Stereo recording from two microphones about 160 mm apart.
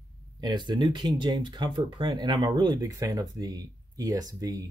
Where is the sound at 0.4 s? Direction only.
25° right (ahead or behind).